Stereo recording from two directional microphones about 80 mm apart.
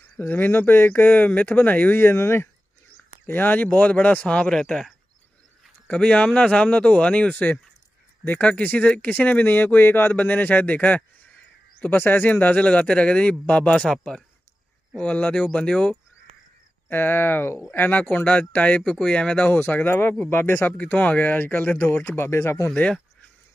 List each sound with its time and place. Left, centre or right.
0.2 s speech: left
15.0 s speech: centre
16.9 s speech: left
18.8 s speech: centre; by 22.7 s left